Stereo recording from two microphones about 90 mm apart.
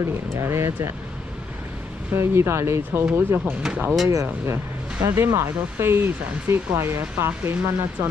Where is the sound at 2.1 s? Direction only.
30° right (ahead or behind).